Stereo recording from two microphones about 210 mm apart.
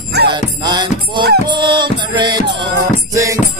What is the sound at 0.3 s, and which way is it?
Music, 20° right (ahead or behind).